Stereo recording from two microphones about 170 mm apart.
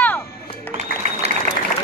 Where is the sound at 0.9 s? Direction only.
60° left (ahead or behind).